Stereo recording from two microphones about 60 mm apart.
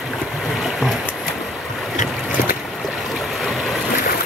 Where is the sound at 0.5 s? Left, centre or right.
Centre.